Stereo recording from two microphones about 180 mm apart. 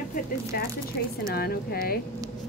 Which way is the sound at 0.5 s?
55° left (ahead or behind).